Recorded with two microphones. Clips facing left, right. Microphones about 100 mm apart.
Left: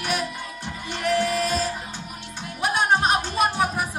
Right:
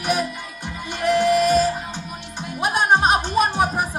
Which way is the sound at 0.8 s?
20° right (ahead or behind).